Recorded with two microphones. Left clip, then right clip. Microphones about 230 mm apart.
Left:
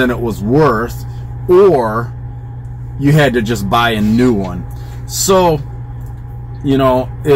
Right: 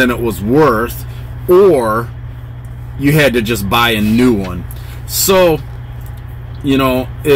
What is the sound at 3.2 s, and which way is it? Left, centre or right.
Speech, right.